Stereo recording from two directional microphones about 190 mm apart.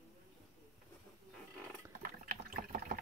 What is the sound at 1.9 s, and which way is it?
Liquid, 50° right (ahead or behind).